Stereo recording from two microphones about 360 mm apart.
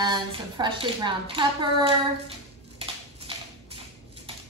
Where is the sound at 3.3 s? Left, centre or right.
Centre.